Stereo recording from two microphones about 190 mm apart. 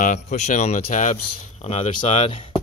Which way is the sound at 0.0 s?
40° left (ahead or behind).